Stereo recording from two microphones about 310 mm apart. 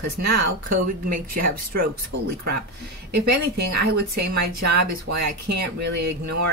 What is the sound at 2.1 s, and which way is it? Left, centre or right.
Speech, right.